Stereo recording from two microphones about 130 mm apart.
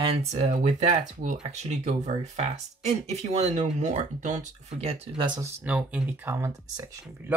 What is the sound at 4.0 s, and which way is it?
Speech, 70° right (ahead or behind).